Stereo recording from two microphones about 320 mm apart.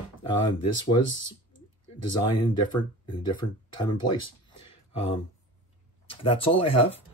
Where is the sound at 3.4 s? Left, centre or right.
Left.